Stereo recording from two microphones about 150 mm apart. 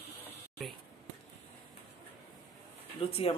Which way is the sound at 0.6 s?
Centre (ahead or behind).